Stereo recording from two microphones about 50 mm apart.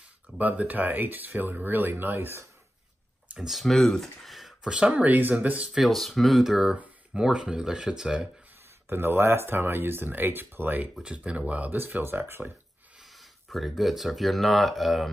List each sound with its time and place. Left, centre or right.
0.4 s speech: right
3.3 s speech: centre
4.6 s speech: centre
5.0 s speech: right
5.8 s speech: centre
8.8 s speech: right
11.0 s speech: right
11.7 s speech: right
13.0 s speech: centre